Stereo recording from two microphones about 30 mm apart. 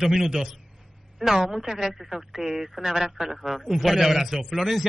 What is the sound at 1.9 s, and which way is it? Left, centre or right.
Speech, centre.